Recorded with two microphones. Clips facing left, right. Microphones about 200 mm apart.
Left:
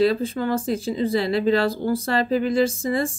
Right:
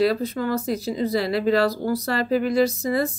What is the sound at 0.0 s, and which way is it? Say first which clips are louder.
Speech: left 1 dB; 25° left (ahead or behind).